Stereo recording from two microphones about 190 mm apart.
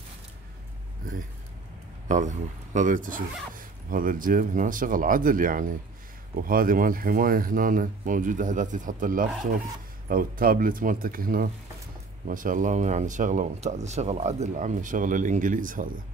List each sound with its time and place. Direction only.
2.0 s speech: 40° right (ahead or behind)